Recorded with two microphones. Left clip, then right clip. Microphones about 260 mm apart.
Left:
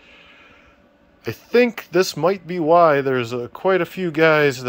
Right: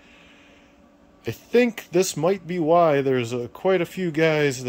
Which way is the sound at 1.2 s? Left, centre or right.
Centre.